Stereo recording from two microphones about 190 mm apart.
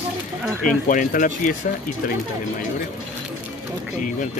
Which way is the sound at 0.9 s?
45° left (ahead or behind).